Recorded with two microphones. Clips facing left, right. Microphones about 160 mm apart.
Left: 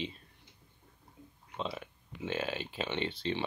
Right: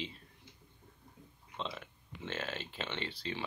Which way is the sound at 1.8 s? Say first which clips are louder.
Left 5 dB; 15° left (ahead or behind).